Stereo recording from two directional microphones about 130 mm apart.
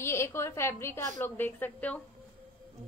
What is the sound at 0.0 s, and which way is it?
A woman's voice, 20° left (ahead or behind).